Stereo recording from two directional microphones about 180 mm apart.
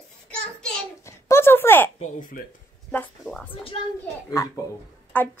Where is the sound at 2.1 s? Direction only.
50° left (ahead or behind).